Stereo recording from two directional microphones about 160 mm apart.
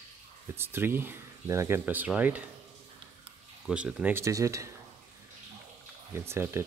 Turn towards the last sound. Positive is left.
turn(degrees=-15)  # may be behind; listen again after turning